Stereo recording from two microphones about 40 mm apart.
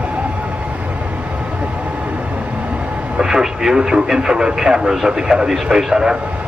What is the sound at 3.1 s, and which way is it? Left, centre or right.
Speech, centre.